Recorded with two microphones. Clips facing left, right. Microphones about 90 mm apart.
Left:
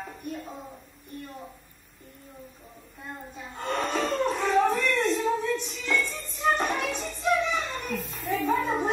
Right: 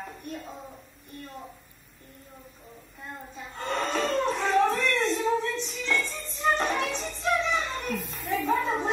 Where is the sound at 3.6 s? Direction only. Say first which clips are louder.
Even; 10° left (ahead or behind).